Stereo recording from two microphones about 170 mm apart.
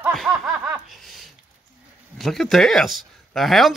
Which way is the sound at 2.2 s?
Centre (ahead or behind).